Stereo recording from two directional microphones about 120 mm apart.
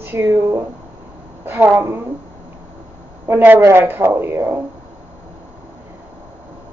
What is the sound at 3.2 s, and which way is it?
A woman's voice, 20° right (ahead or behind).